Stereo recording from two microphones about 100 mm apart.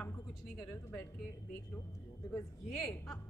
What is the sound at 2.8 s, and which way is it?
Speech, 5° left (ahead or behind).